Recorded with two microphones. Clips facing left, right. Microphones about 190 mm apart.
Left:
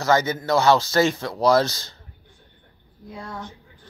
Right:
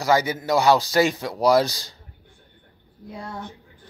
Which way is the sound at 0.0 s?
10° right (ahead or behind).